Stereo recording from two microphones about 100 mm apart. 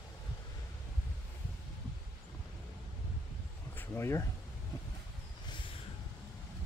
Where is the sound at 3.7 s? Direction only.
20° left (ahead or behind).